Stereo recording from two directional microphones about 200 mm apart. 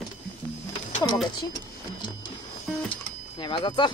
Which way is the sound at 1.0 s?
20° left (ahead or behind).